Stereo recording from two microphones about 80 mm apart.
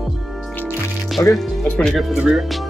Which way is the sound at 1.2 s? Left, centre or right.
Left.